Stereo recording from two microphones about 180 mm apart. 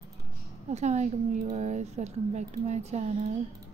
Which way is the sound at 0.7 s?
40° right (ahead or behind).